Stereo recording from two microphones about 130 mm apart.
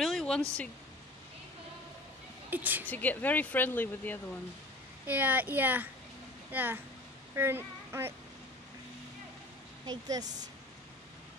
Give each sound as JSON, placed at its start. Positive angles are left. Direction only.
{"t": 0.0, "sound": "a sound", "side_deg": 5}
{"t": 2.5, "sound": "speech", "side_deg": -15}
{"t": 2.9, "sound": "speech", "side_deg": 15}
{"t": 5.0, "sound": "speech", "side_deg": -15}
{"t": 9.8, "sound": "a woman's voice", "side_deg": -30}